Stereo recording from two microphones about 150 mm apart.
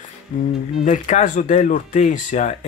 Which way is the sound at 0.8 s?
55° left (ahead or behind).